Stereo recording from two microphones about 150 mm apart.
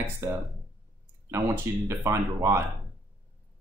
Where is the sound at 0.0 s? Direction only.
20° right (ahead or behind).